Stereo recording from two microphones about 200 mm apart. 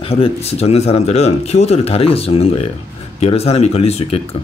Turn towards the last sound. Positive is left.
turn(degrees=30)  # may be behind; listen again after turning